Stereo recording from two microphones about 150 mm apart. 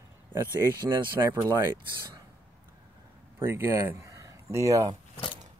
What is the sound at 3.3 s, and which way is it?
Speech, 15° right (ahead or behind).